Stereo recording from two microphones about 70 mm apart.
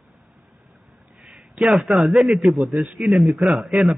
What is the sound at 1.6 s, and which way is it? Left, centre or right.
A man's voice, centre.